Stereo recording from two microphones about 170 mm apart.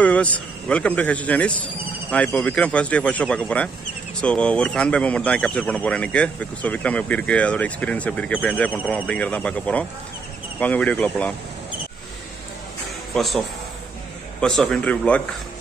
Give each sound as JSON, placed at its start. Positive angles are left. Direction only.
{"t": 0.0, "sound": "speech", "side_deg": 10}
{"t": 13.1, "sound": "speech", "side_deg": 0}
{"t": 14.6, "sound": "speech", "side_deg": 5}